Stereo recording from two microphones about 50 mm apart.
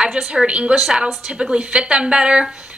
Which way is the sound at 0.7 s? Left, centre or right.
Centre.